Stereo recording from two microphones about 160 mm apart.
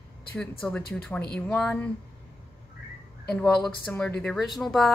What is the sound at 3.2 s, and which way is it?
Speech, 5° left (ahead or behind).